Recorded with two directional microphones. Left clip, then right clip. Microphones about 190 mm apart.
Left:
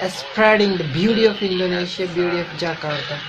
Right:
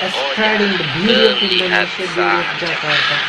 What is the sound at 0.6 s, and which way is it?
Speech, 45° right (ahead or behind).